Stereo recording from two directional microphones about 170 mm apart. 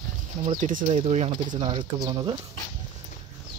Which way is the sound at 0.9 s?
35° right (ahead or behind).